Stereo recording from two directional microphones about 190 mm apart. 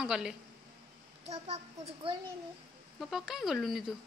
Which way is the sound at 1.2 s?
35° right (ahead or behind).